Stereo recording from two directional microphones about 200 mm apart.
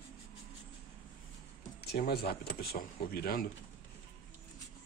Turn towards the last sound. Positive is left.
turn(degrees=50)  # may be behind; listen again after turning